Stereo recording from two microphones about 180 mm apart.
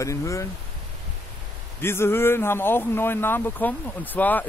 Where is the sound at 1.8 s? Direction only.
15° left (ahead or behind).